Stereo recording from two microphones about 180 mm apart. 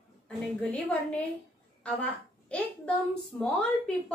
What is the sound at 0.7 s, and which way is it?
A woman's voice, 10° left (ahead or behind).